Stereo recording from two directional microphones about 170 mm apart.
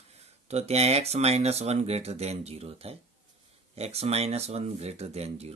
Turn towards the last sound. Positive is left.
turn(degrees=-40)  # may be behind; listen again after turning